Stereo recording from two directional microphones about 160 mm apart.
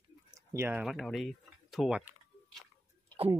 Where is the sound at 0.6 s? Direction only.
15° right (ahead or behind).